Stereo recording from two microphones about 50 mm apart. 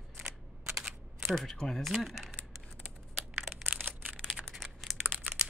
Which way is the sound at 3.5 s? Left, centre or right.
Right.